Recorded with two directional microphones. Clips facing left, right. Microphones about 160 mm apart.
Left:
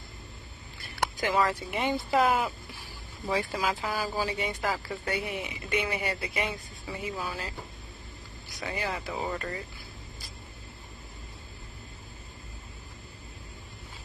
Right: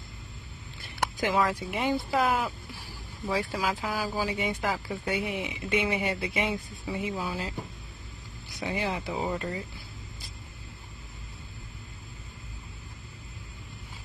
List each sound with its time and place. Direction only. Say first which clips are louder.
1.3 s speech: left 1 dB; 5° right (ahead or behind)
8.6 s speech: right 3 dB; 15° right (ahead or behind)